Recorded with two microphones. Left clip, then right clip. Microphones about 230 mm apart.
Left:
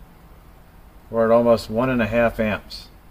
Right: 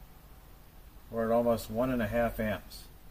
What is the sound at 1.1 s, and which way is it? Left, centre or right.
Speech, left.